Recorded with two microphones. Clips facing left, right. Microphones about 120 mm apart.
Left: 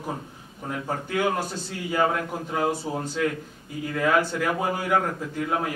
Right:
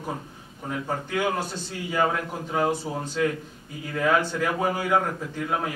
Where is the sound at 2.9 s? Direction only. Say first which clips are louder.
Left 1 dB; 20° left (ahead or behind).